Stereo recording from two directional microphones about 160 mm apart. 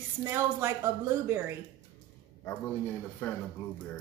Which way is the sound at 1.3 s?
15° right (ahead or behind).